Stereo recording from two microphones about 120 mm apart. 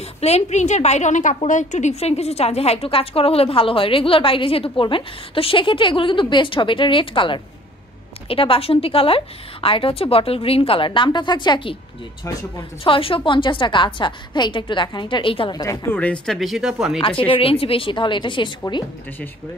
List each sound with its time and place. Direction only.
0.2 s a woman's voice: 65° left (ahead or behind); by 11.7 s 40° left (ahead or behind)
12.8 s a woman's voice: 45° left (ahead or behind)
15.9 s speech: 10° left (ahead or behind)
17.3 s a woman's voice: 50° left (ahead or behind)